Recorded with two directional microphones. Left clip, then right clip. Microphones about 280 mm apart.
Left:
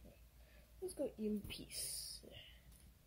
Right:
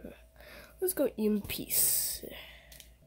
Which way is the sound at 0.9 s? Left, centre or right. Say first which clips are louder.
Right 12 dB; right.